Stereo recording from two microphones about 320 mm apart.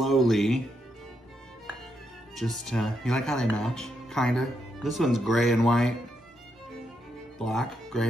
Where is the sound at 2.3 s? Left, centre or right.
Centre.